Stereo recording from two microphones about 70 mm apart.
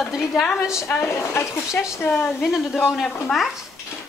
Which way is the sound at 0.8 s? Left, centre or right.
Left.